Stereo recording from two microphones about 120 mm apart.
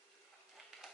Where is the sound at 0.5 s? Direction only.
Centre (ahead or behind).